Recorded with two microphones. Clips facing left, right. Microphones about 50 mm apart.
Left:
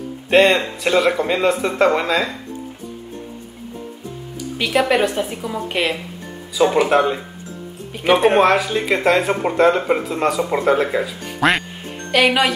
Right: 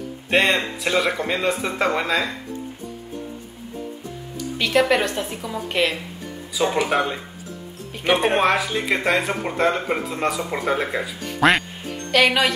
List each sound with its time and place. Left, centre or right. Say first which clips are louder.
0.3 s speech: left 5 dB; centre
4.6 s a woman's voice: left 2 dB; centre